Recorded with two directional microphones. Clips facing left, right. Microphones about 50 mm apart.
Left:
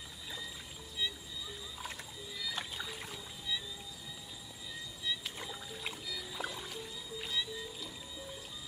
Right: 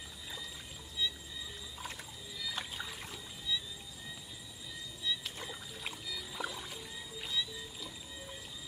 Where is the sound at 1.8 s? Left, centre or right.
Centre.